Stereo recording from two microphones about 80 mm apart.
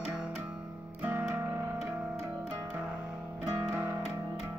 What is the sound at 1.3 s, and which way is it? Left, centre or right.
Music, right.